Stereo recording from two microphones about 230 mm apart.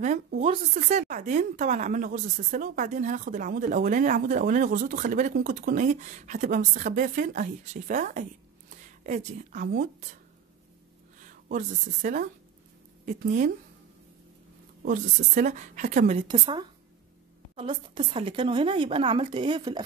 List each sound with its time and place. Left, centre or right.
0.0 s speech: right
11.2 s speech: right
14.8 s speech: right